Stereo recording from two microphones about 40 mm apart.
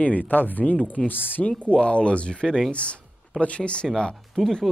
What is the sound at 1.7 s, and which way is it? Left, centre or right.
Speech, left.